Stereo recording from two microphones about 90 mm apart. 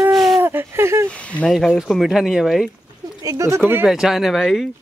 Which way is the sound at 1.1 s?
15° left (ahead or behind).